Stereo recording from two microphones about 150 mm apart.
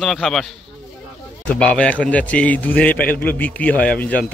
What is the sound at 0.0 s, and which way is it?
Speech, centre (ahead or behind).